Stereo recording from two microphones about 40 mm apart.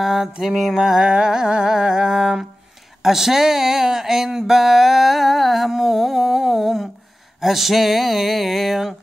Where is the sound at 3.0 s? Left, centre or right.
Centre.